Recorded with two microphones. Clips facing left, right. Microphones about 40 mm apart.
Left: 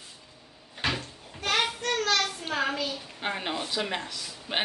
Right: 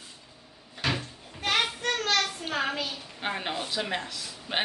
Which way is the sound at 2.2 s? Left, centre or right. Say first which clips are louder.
Left 1 dB; centre.